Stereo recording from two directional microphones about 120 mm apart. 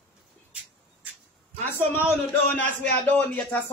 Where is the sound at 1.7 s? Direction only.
15° left (ahead or behind).